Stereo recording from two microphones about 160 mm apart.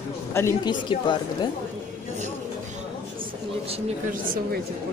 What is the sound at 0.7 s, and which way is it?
Speech, 30° left (ahead or behind).